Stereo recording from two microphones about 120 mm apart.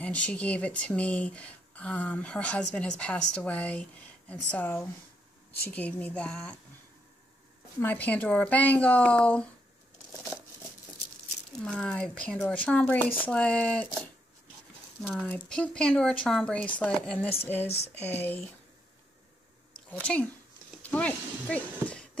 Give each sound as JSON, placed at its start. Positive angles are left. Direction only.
{"t": 0.0, "sound": "speech", "side_deg": 10}
{"t": 7.8, "sound": "speech", "side_deg": 15}
{"t": 11.6, "sound": "speech", "side_deg": 5}
{"t": 15.2, "sound": "speech", "side_deg": 10}
{"t": 17.6, "sound": "speech", "side_deg": 60}
{"t": 18.0, "sound": "speech", "side_deg": 15}
{"t": 19.9, "sound": "speech", "side_deg": 10}